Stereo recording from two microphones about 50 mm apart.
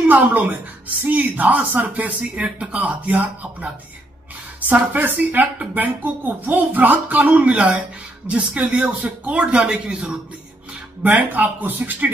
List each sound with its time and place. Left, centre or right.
0.1 s a woman's voice: right; by 10.1 s centre
11.1 s speech: right